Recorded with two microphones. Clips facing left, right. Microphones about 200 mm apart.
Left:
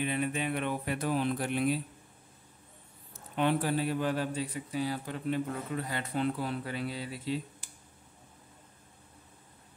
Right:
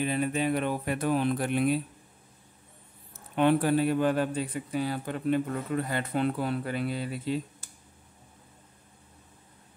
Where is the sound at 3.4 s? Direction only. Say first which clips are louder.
Right 6 dB; 55° right (ahead or behind).